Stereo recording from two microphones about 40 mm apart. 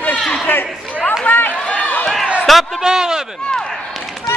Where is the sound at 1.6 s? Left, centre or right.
Left.